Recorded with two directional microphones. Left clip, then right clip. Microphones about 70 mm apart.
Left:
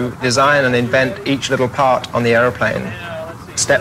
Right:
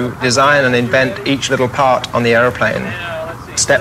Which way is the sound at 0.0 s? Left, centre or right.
Right.